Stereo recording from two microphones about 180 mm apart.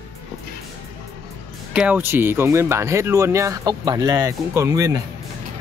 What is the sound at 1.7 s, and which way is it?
Speech, 5° right (ahead or behind).